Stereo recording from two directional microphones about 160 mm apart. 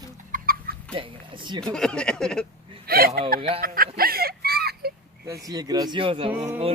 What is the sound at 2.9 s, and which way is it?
Speech, 70° right (ahead or behind).